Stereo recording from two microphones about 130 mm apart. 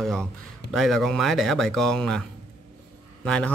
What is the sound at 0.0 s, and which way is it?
Speech, 5° left (ahead or behind).